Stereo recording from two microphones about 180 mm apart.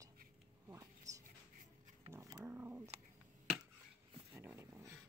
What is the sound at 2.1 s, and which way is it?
Roaring cats, 15° right (ahead or behind).